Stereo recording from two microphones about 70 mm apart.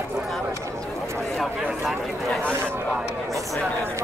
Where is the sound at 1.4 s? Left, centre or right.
Centre.